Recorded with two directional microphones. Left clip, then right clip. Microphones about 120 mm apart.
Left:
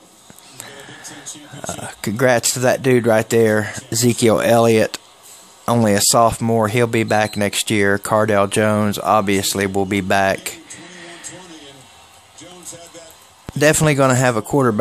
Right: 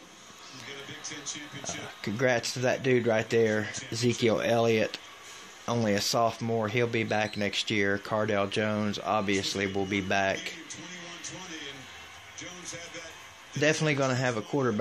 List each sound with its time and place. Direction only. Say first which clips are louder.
2.0 s speech: left 11 dB; 90° left
5.7 s speech: left 12 dB; 90° left; by 10.5 s 75° left (ahead or behind)
13.6 s speech: left 12 dB; 75° left (ahead or behind)